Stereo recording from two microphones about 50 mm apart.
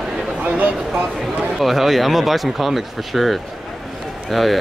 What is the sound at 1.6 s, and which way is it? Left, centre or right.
Speech, centre.